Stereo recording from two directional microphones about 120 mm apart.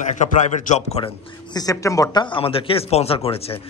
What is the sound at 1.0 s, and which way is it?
A man's voice, 35° left (ahead or behind).